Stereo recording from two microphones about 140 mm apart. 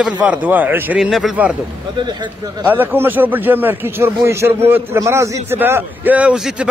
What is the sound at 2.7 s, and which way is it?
A man's voice, 15° right (ahead or behind).